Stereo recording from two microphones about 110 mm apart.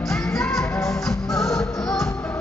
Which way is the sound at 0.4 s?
5° left (ahead or behind).